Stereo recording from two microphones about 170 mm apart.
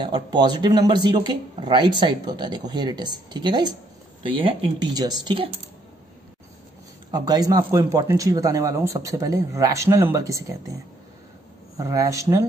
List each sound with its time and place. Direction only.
0.0 s speech: 25° right (ahead or behind)
7.1 s speech: 25° right (ahead or behind)